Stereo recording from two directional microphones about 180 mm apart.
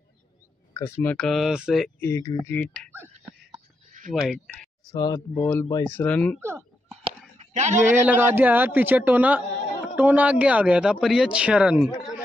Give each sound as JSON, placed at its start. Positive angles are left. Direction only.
{"t": 0.7, "sound": "speech", "side_deg": 15}
{"t": 1.1, "sound": "speech", "side_deg": 0}
{"t": 2.0, "sound": "speech", "side_deg": 15}
{"t": 3.5, "sound": "a sound", "side_deg": -45}
{"t": 4.1, "sound": "speech", "side_deg": 0}
{"t": 4.9, "sound": "speech", "side_deg": 20}
{"t": 5.3, "sound": "speech", "side_deg": 10}
{"t": 5.7, "sound": "speech", "side_deg": 20}
{"t": 5.9, "sound": "speech", "side_deg": 5}
{"t": 6.4, "sound": "a sound", "side_deg": -15}
{"t": 7.1, "sound": "a sound", "side_deg": -40}
{"t": 7.9, "sound": "speech", "side_deg": -10}